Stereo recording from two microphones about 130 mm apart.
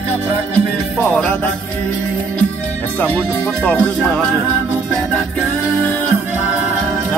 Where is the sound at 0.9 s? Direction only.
10° left (ahead or behind).